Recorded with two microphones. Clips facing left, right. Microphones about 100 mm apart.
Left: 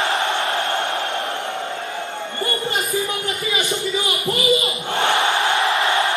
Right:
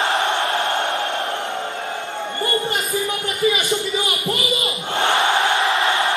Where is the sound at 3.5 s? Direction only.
20° left (ahead or behind).